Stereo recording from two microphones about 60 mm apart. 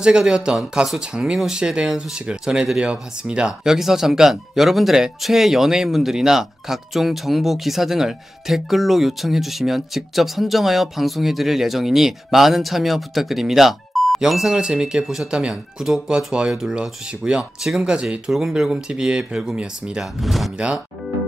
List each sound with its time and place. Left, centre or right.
0.0 s speech: centre
20.2 s speech: centre
20.5 s speech: centre